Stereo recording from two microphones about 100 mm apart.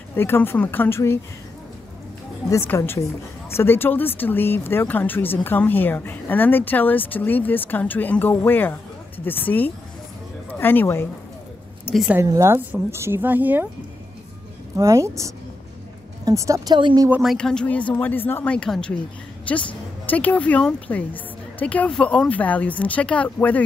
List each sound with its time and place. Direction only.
0.1 s a woman's voice: 20° left (ahead or behind)
2.6 s a woman's voice: 20° left (ahead or behind)
12.3 s speech: 30° right (ahead or behind)
14.8 s speech: 30° right (ahead or behind)
16.7 s speech: 45° right (ahead or behind)
17.4 s a woman's voice: 10° left (ahead or behind)